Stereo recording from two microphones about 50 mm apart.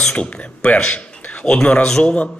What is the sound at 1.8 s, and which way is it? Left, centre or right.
Speech, centre.